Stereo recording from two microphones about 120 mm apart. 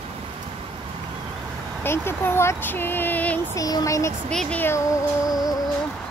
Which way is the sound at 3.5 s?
30° left (ahead or behind).